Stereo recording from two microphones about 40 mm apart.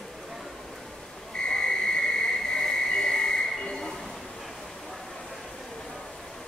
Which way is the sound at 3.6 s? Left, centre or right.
Centre.